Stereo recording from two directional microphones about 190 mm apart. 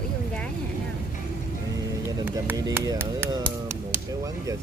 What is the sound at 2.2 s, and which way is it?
Speech, 15° right (ahead or behind).